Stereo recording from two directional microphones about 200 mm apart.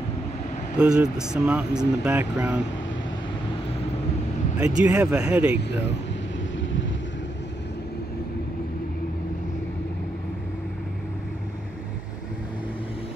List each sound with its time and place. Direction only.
0.7 s speech: 5° right (ahead or behind)
4.6 s speech: 5° right (ahead or behind)
6.5 s vehicle: 70° left (ahead or behind)